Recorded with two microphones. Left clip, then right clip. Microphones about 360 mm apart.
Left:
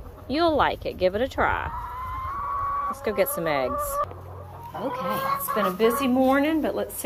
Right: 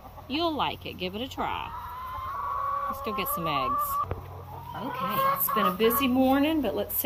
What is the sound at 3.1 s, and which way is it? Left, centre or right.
Speech, centre.